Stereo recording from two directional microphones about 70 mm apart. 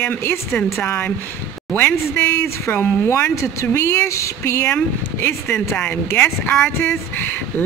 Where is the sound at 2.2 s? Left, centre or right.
Left.